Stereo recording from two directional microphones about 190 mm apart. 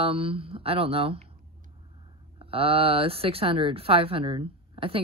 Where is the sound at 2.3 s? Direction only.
30° right (ahead or behind).